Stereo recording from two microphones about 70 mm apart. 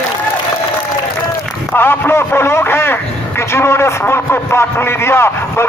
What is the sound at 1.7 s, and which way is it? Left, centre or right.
A man's voice, left.